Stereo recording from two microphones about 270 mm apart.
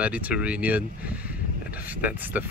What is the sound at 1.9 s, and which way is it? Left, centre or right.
Speech, centre.